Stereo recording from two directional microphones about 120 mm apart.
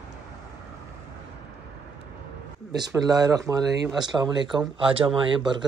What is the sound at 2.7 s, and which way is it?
Speech, 35° right (ahead or behind).